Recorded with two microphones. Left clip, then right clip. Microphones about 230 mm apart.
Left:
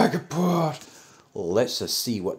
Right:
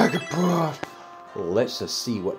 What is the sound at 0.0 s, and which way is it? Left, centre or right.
Speech, centre.